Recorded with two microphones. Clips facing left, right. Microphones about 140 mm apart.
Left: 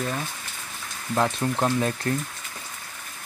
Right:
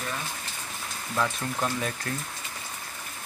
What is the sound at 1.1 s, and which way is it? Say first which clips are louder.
Speech: left 5 dB; 35° left (ahead or behind).